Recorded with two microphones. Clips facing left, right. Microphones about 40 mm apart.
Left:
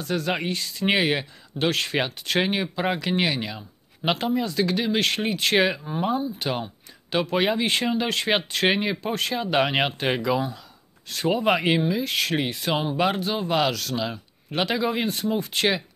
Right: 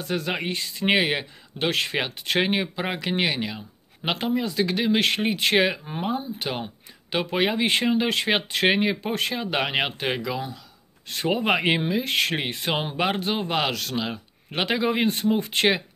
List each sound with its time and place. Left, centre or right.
0.0 s speech: centre
9.4 s speech: centre
11.1 s speech: right